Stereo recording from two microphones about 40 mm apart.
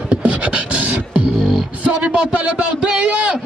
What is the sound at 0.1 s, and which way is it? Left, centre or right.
Beatboxing, right.